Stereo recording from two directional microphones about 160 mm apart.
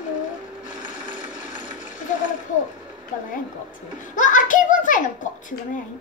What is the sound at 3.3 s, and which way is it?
A child's voice, 55° left (ahead or behind).